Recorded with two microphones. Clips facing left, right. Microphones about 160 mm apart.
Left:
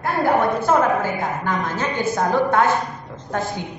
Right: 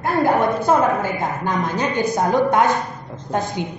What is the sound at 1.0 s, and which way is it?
A woman's voice, 15° right (ahead or behind).